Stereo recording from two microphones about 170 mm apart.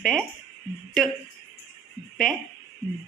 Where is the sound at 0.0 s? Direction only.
5° left (ahead or behind).